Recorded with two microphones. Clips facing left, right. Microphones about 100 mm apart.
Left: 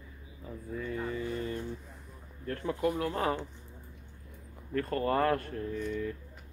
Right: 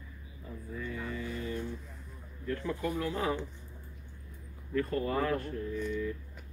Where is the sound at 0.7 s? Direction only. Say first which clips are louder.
Left 3 dB; 35° left (ahead or behind).